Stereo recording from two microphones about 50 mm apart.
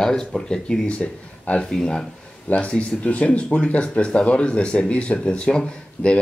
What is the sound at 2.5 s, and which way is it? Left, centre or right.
Speech, left.